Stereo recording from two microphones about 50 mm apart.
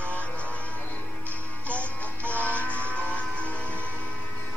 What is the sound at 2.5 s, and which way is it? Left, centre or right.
Music, left.